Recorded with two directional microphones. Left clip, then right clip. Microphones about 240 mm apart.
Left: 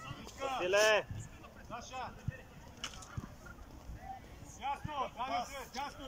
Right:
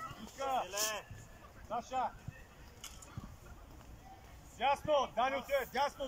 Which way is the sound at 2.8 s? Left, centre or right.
Left.